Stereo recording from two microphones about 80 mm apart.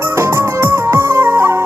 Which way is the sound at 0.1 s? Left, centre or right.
Right.